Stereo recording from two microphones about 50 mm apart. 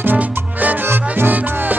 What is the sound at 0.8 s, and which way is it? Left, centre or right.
Music, right.